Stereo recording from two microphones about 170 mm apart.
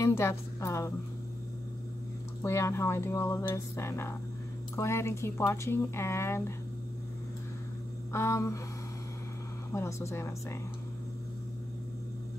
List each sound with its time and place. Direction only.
0.0 s a woman's voice: 15° left (ahead or behind)
2.4 s speech: 15° left (ahead or behind)
8.1 s speech: 15° left (ahead or behind)
9.8 s speech: 15° left (ahead or behind)